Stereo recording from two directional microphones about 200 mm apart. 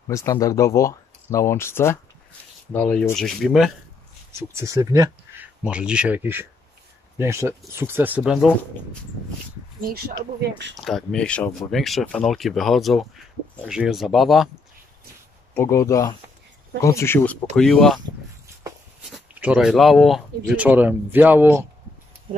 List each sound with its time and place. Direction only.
0.1 s speech: 15° left (ahead or behind); by 3.7 s centre (ahead or behind)
4.3 s speech: 15° right (ahead or behind)
9.8 s speech: 50° right (ahead or behind)
10.8 s speech: centre (ahead or behind)
15.5 s speech: 15° left (ahead or behind)
19.1 s speech: 5° right (ahead or behind)